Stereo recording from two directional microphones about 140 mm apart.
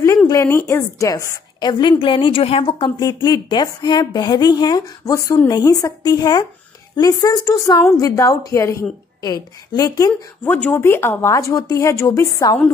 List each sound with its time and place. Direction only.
0.3 s a woman's voice: 20° left (ahead or behind)